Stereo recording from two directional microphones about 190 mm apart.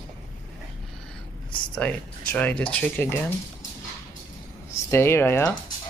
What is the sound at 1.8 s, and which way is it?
Speech, 5° left (ahead or behind).